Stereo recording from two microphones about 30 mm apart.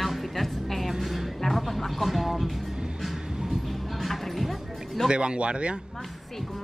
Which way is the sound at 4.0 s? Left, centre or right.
Centre.